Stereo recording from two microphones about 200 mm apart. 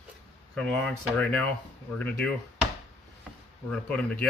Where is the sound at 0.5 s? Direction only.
5° left (ahead or behind).